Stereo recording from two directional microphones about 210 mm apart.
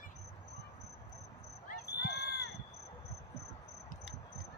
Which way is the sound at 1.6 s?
55° left (ahead or behind).